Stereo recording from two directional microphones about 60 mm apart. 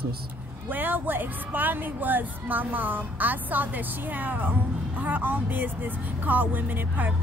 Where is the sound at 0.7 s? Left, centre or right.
Right.